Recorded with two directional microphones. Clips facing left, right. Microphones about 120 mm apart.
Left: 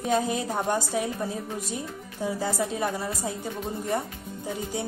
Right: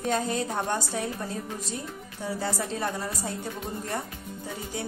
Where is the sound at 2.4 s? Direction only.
15° left (ahead or behind).